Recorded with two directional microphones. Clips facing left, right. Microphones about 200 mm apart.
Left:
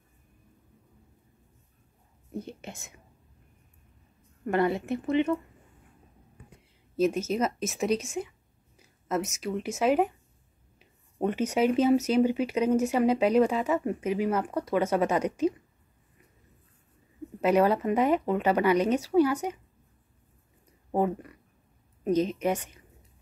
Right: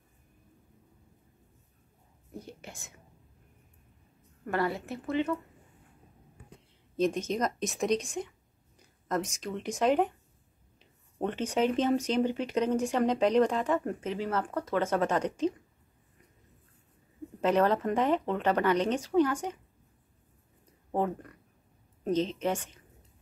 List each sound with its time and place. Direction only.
2.3 s a woman's voice: 20° left (ahead or behind)
4.5 s a woman's voice: 20° left (ahead or behind)
7.0 s speech: 5° left (ahead or behind)
8.7 s a sound: 5° left (ahead or behind)
9.3 s speech: 10° left (ahead or behind)
17.4 s speech: 10° left (ahead or behind)
20.9 s a woman's voice: 10° left (ahead or behind)